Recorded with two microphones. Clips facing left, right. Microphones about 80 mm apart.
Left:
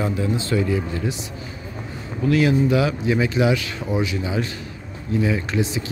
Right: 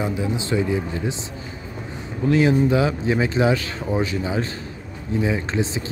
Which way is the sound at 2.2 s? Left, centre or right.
Right.